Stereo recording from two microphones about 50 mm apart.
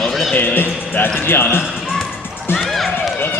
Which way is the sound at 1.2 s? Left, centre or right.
Left.